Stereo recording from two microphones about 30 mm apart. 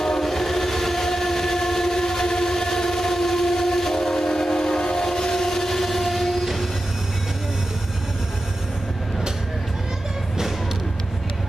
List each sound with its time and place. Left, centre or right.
0.0 s train: centre